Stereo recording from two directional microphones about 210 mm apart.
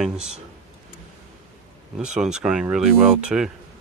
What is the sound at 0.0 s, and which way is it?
Speech, 5° right (ahead or behind).